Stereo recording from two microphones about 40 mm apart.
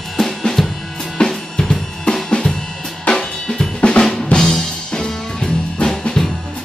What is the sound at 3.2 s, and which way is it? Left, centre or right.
Drum kit, centre.